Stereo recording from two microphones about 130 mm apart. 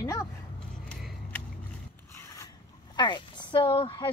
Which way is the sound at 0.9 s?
5° left (ahead or behind).